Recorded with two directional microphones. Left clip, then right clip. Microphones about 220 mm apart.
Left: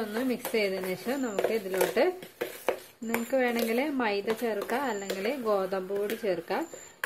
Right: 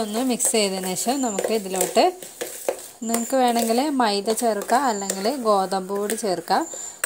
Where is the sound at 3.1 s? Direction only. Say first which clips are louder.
Right 7 dB; 30° right (ahead or behind).